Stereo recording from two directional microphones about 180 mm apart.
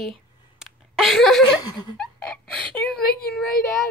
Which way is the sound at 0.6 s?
Centre (ahead or behind).